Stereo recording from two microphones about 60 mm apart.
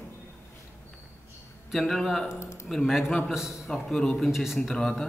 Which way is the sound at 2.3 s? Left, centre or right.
Left.